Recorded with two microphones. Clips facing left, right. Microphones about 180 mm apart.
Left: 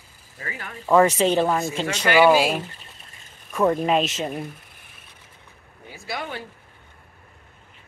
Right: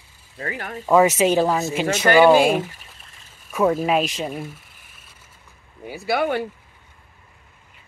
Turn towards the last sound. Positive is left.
turn(degrees=-65)  # may be behind; listen again after turning